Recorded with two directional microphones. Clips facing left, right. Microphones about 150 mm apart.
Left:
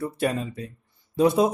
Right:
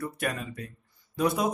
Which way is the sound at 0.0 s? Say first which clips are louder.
Left 6 dB; 30° left (ahead or behind).